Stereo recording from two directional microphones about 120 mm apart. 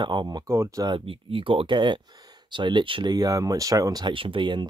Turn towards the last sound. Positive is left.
turn(degrees=-40)  # may be behind; listen again after turning